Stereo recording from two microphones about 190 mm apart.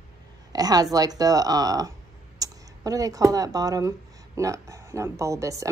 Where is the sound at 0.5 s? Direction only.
20° right (ahead or behind).